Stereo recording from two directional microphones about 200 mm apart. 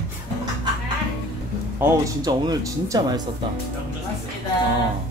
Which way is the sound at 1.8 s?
20° right (ahead or behind).